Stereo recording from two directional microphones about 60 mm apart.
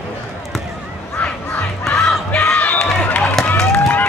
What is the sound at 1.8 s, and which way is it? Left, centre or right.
Crowd, centre.